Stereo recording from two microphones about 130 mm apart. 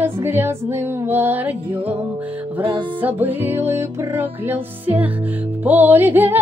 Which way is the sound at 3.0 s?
15° right (ahead or behind).